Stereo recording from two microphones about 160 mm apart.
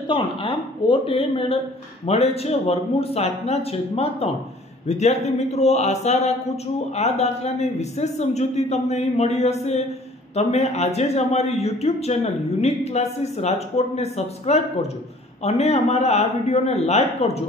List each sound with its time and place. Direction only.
0.1 s a man's voice: 30° left (ahead or behind)